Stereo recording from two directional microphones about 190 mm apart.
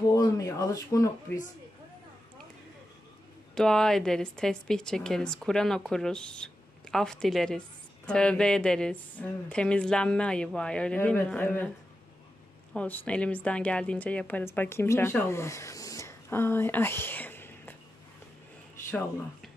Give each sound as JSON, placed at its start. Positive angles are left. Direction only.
{"t": 0.1, "sound": "speech", "side_deg": 20}
{"t": 3.5, "sound": "speech", "side_deg": 0}
{"t": 12.7, "sound": "a woman's voice", "side_deg": 10}
{"t": 18.9, "sound": "speech", "side_deg": 10}